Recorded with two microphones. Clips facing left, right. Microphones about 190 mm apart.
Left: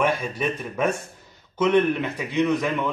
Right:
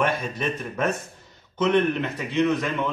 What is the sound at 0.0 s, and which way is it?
A man's voice, 10° left (ahead or behind).